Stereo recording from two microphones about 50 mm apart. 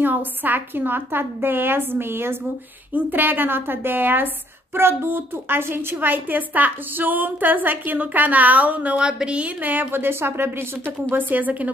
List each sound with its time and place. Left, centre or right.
0.0 s a woman's voice: right
2.9 s a woman's voice: right
4.7 s a woman's voice: right
9.6 s a woman's voice: right
10.9 s a woman's voice: right